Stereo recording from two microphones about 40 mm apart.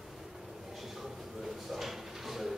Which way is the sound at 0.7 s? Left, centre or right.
Centre.